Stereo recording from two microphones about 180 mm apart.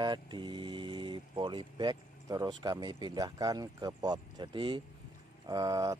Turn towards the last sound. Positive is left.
turn(degrees=-20)  # may be behind; listen again after turning